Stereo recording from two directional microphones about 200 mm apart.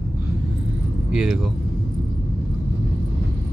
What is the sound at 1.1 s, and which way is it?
Speech, centre (ahead or behind).